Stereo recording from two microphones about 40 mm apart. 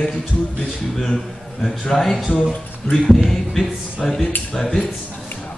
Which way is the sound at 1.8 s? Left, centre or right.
Centre.